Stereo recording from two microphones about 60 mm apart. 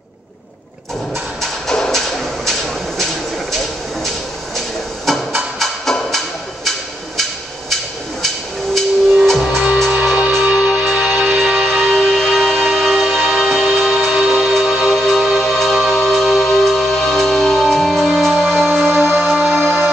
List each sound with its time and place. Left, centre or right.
1.4 s a sound: centre
8.7 s music: centre
9.4 s music: centre
10.3 s music: right
11.2 s music: centre